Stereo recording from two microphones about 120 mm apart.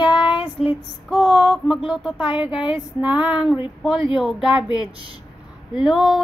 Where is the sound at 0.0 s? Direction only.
40° left (ahead or behind).